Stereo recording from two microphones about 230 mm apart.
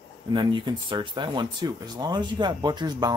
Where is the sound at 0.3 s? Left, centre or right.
Centre.